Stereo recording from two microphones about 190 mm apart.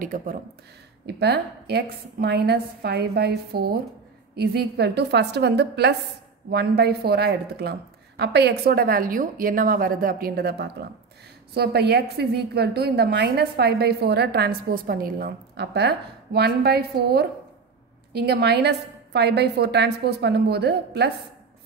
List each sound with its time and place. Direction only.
0.0 s speech: 45° right (ahead or behind)
1.0 s a woman's voice: 60° right (ahead or behind)